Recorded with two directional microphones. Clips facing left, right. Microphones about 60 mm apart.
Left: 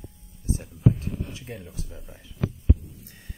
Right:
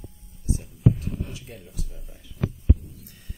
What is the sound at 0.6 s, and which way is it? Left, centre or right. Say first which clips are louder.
Speech: even; left.